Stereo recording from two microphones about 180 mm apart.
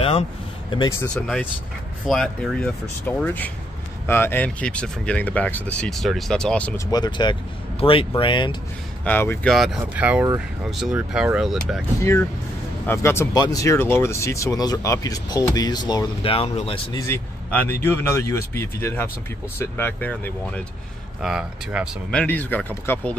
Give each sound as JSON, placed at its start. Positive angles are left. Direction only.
{"t": 0.7, "sound": "speech", "side_deg": 20}
{"t": 1.1, "sound": "speech", "side_deg": 5}
{"t": 6.9, "sound": "speech", "side_deg": 25}
{"t": 9.0, "sound": "speech", "side_deg": 10}
{"t": 9.5, "sound": "speech", "side_deg": 0}
{"t": 12.0, "sound": "speech", "side_deg": 15}
{"t": 17.1, "sound": "speech", "side_deg": 10}
{"t": 21.2, "sound": "speech", "side_deg": -5}
{"t": 22.2, "sound": "speech", "side_deg": 10}